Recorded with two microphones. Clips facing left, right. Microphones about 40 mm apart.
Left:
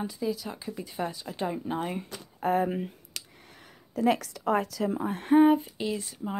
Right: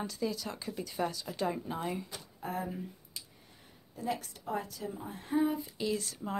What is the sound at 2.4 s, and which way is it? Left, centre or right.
Speech, left.